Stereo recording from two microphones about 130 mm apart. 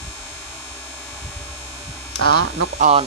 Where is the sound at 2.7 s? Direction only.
65° right (ahead or behind).